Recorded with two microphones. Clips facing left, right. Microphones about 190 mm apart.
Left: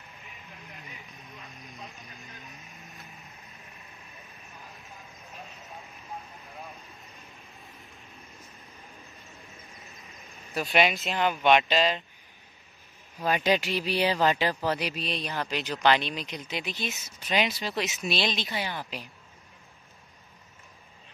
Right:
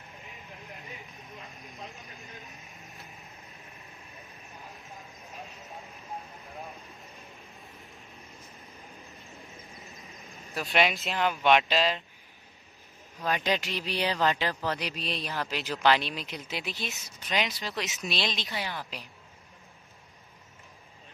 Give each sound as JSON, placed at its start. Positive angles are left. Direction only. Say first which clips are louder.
{"t": 1.9, "sound": "vehicle", "louder": "right 1 dB", "side_deg": 0}
{"t": 7.0, "sound": "vehicle", "louder": "right 2 dB", "side_deg": 0}
{"t": 9.3, "sound": "vehicle", "louder": "right 2 dB", "side_deg": -15}
{"t": 10.5, "sound": "speech", "louder": "left 2 dB", "side_deg": 0}
{"t": 13.2, "sound": "speech", "louder": "left 4 dB", "side_deg": 10}